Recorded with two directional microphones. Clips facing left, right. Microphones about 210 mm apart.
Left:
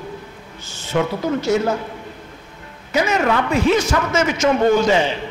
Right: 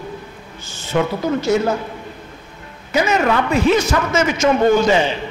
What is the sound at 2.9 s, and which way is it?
A man's voice, 10° right (ahead or behind).